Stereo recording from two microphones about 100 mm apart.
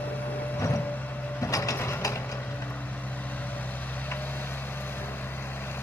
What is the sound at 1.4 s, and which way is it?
Mechanisms, 30° left (ahead or behind).